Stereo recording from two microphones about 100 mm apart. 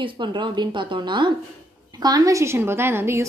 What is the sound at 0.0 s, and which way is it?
A woman's voice, 50° right (ahead or behind).